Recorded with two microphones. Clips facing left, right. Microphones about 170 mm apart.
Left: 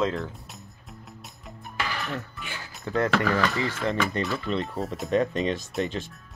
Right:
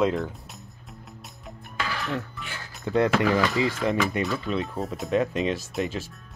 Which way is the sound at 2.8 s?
15° right (ahead or behind).